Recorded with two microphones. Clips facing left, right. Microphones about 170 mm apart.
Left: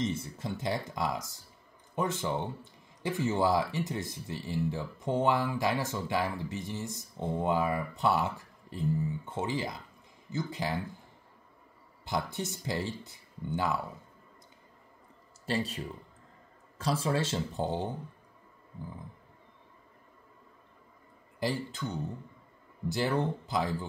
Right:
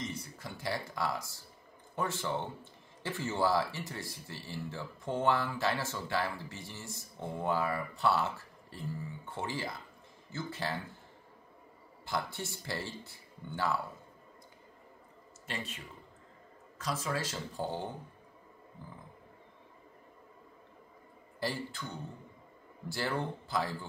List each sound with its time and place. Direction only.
0.0 s speech: 25° left (ahead or behind)
12.0 s speech: 20° left (ahead or behind)
15.4 s speech: 35° left (ahead or behind); by 17.9 s 20° left (ahead or behind)
21.4 s speech: 20° left (ahead or behind)